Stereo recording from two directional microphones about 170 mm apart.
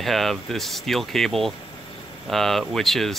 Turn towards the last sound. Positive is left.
turn(degrees=0)  # may be behind; listen again after turning